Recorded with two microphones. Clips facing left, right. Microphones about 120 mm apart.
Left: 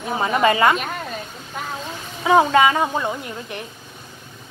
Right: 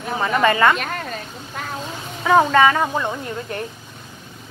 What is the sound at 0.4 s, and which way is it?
Speech, 20° left (ahead or behind).